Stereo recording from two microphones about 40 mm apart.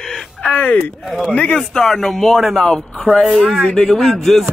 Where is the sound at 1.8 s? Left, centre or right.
Centre.